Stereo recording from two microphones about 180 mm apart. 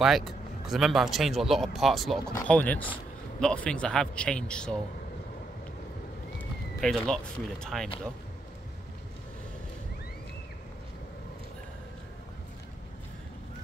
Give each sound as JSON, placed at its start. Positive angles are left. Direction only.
{"t": 0.0, "sound": "speech", "side_deg": 0}
{"t": 6.3, "sound": "speech", "side_deg": 0}